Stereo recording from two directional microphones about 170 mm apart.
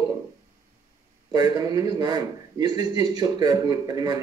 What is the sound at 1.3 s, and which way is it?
A man's voice, 20° right (ahead or behind).